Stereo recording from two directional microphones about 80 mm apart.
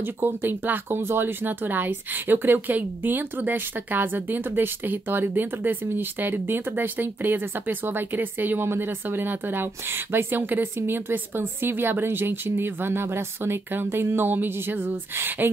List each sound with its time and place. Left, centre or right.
0.0 s speech: right